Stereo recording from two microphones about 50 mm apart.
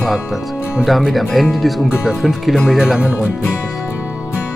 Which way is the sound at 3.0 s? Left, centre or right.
Right.